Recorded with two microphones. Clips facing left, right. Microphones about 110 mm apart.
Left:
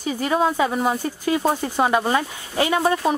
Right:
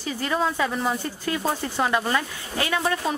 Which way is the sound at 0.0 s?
15° left (ahead or behind).